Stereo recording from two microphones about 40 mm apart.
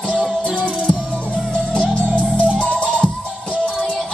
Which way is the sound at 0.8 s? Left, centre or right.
Centre.